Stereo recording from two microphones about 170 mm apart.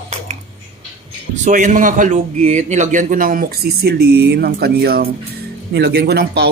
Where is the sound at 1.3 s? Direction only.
45° right (ahead or behind).